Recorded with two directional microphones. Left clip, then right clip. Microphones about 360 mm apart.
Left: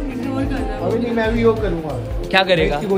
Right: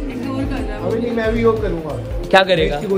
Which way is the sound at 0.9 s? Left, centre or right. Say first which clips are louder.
Right 1 dB; centre.